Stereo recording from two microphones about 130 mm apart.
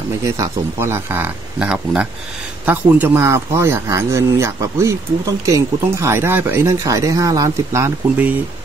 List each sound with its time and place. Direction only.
0.2 s speech: 20° right (ahead or behind)